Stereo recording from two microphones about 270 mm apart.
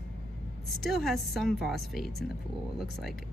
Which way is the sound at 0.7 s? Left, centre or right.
Centre.